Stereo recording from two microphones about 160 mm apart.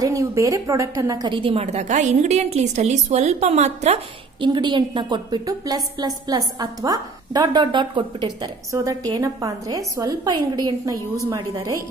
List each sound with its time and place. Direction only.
0.0 s a woman's voice: 20° right (ahead or behind); by 4.0 s 45° right (ahead or behind)
4.4 s a woman's voice: 30° right (ahead or behind)